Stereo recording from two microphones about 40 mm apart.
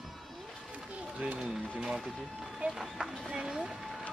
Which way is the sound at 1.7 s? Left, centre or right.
Centre.